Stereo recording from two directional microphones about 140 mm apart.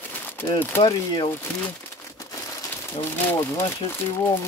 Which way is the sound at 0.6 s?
15° left (ahead or behind).